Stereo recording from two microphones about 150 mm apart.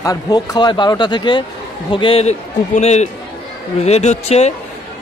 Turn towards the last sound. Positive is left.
turn(degrees=45)  # may be behind; listen again after turning